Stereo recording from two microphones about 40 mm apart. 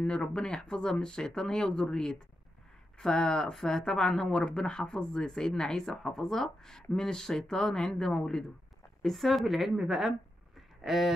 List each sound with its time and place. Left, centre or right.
0.0 s speech: left; by 9.5 s centre
9.5 s speech: centre
10.8 s speech: centre